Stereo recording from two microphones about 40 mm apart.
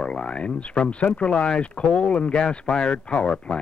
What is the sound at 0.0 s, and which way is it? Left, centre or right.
Speech, left.